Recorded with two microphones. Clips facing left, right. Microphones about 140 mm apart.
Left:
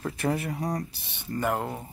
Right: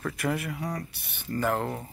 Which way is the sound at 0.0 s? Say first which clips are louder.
Left 2 dB; 30° left (ahead or behind).